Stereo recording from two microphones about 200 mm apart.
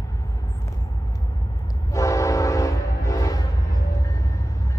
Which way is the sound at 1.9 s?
15° left (ahead or behind).